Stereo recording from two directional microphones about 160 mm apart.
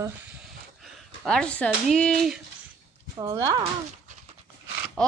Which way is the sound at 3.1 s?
25° right (ahead or behind).